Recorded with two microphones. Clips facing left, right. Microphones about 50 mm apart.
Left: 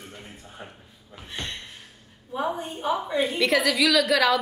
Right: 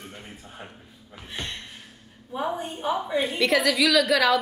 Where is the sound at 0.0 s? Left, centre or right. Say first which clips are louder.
Right 1 dB; centre.